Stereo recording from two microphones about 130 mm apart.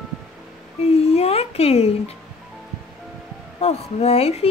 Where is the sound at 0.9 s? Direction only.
55° left (ahead or behind).